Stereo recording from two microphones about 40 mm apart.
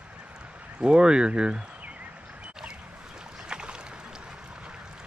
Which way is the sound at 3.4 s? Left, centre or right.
Right.